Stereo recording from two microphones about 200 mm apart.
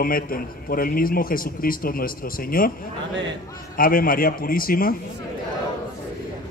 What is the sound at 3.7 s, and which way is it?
A man's voice, 45° left (ahead or behind).